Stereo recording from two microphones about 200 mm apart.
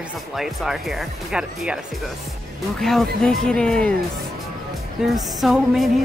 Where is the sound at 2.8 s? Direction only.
Centre (ahead or behind).